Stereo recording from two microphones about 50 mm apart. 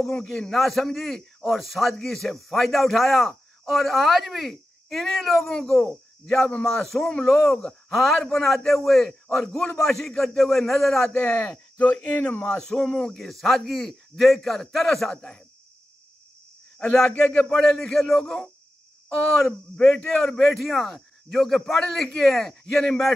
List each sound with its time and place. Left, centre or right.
0.3 s a man's voice: centre
5.5 s a man's voice: centre
11.1 s speech: left
12.4 s a man's voice: centre
16.7 s speech: centre
17.5 s a man's voice: centre